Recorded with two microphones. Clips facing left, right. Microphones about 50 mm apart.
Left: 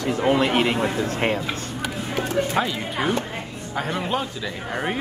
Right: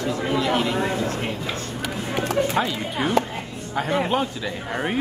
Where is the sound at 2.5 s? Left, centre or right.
Centre.